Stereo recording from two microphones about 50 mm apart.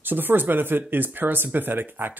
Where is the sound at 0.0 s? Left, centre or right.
Right.